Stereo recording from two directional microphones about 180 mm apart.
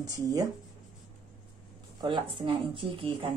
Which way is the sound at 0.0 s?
20° right (ahead or behind).